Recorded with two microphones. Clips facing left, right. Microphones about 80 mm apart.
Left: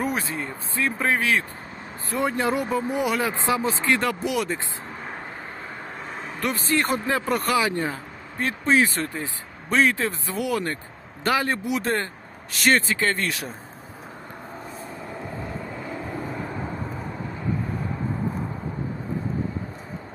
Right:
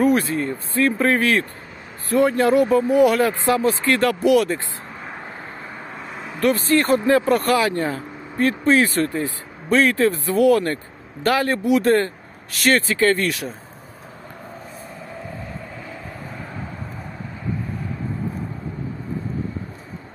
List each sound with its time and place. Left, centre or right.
0.0 s speech: centre
6.4 s speech: centre